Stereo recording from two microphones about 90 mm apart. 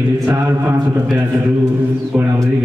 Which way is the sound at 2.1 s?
25° right (ahead or behind).